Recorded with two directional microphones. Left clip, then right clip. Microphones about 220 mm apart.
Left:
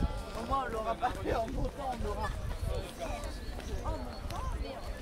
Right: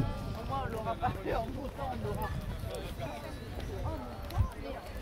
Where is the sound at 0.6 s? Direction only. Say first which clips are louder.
Left 2 dB; 45° left (ahead or behind).